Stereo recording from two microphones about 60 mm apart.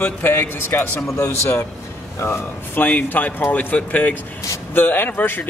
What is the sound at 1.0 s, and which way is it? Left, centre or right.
A man's voice, left.